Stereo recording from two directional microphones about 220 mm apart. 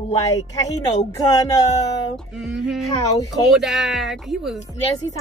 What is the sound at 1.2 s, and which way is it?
Speech, 15° left (ahead or behind).